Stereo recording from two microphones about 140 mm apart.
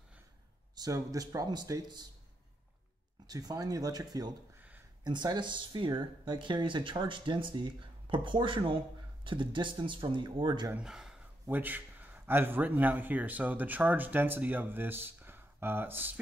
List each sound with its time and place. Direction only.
0.7 s speech: 25° right (ahead or behind)
3.3 s speech: 25° right (ahead or behind)
4.6 s a sound: 15° right (ahead or behind)
5.0 s speech: 30° right (ahead or behind)
10.7 s a man's voice: 5° right (ahead or behind)